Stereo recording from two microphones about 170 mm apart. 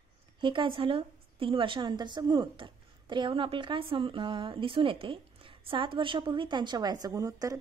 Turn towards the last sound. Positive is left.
turn(degrees=-20)  # may be behind; listen again after turning